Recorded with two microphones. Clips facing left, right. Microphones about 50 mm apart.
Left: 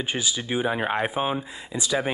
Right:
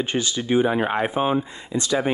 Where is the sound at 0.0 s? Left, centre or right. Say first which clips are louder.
Right 3 dB; centre.